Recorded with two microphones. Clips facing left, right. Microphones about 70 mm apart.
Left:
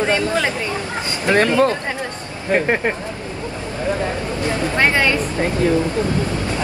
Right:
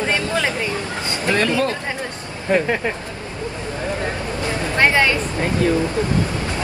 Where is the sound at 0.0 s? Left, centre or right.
Left.